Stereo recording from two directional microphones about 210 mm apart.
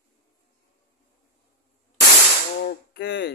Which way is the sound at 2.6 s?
55° left (ahead or behind).